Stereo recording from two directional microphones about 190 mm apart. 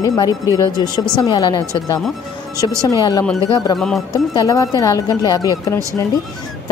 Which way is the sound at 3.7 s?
Centre (ahead or behind).